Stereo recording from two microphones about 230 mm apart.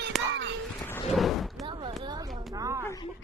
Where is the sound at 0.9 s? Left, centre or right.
Centre.